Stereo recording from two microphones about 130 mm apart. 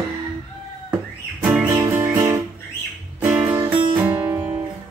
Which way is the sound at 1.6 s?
20° right (ahead or behind).